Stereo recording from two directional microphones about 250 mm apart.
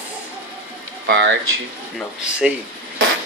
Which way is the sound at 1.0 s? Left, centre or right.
Right.